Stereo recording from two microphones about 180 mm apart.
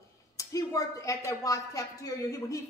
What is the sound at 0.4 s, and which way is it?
A man's voice, 20° left (ahead or behind).